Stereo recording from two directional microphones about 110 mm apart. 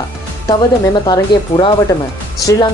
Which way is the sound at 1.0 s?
40° left (ahead or behind).